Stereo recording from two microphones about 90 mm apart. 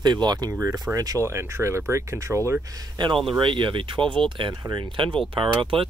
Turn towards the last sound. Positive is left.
turn(degrees=-90)